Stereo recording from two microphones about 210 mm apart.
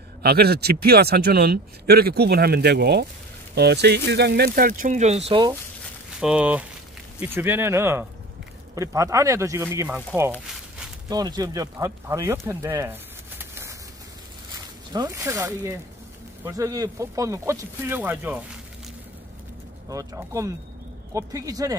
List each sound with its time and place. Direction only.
0.2 s a man's voice: 50° right (ahead or behind); by 5.6 s 20° right (ahead or behind)
6.1 s speech: 5° right (ahead or behind)
14.9 s speech: 15° right (ahead or behind)
19.9 s speech: 15° right (ahead or behind)